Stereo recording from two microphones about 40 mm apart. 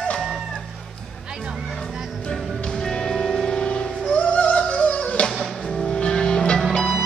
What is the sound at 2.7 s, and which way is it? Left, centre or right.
Music, centre.